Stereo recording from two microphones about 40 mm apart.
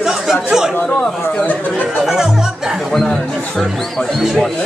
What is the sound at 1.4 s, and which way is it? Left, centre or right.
Speech, left.